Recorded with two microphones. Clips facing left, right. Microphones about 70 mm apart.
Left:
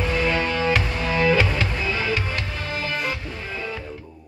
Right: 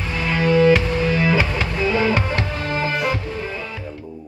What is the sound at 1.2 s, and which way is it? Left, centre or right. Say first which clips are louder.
Music: even; centre.